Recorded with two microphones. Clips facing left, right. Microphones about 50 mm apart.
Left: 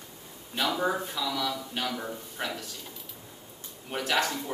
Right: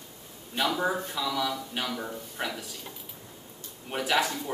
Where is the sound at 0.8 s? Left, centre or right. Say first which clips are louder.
Even; centre.